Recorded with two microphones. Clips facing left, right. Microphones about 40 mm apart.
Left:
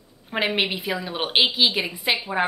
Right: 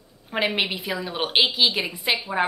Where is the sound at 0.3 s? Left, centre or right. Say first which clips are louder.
Left 1 dB; centre.